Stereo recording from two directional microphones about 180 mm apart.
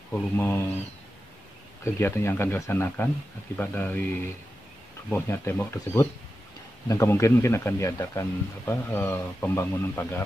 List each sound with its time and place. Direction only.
0.1 s speech: 10° left (ahead or behind)
2.0 s speech: 15° left (ahead or behind)